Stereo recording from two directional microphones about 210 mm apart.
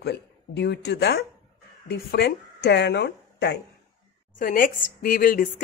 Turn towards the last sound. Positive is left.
turn(degrees=40)  # may be behind; listen again after turning